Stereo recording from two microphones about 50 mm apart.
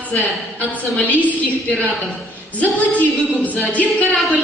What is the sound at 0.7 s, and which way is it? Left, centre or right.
Speech, left.